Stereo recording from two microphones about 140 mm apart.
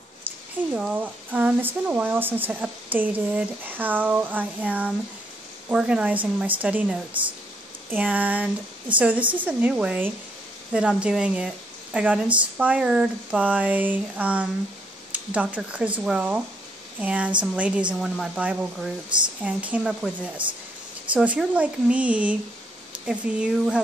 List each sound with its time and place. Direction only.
0.7 s speech: 10° right (ahead or behind)
19.0 s speech: 35° right (ahead or behind)
19.4 s speech: 10° right (ahead or behind)